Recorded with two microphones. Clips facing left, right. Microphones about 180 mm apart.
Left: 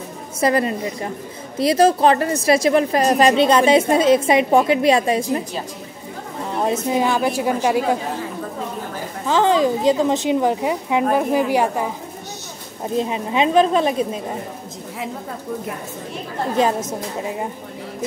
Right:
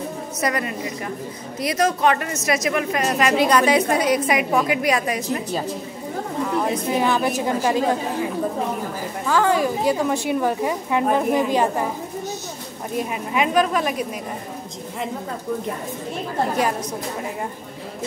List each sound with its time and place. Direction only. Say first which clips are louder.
0.4 s a woman's voice: left 7 dB; 30° left (ahead or behind)
6.5 s a woman's voice: left 3 dB; 20° left (ahead or behind)
9.3 s a woman's voice: left 3 dB; 20° left (ahead or behind)
12.9 s a woman's voice: left 3 dB; 25° left (ahead or behind)
16.6 s a woman's voice: left 6 dB; 25° left (ahead or behind)